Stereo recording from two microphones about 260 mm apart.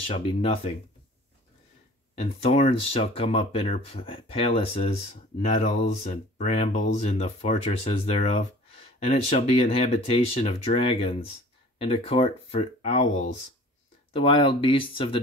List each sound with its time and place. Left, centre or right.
0.0 s speech: left
2.1 s speech: left
5.9 s speech: left